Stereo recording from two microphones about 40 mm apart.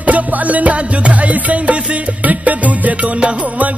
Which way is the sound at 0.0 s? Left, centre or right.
Right.